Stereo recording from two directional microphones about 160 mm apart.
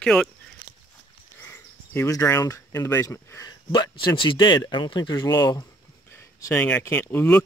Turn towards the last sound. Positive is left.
turn(degrees=10)  # may be behind; listen again after turning